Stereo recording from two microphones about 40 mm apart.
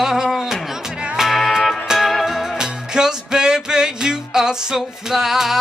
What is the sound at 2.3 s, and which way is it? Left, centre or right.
Music, centre.